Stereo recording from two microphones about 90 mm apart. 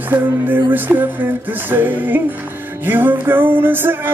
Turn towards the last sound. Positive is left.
turn(degrees=-20)  # may be behind; listen again after turning